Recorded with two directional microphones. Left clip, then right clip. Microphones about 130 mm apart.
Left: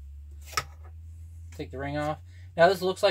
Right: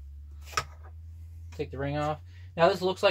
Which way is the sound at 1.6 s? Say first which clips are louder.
Right 1 dB; 35° right (ahead or behind).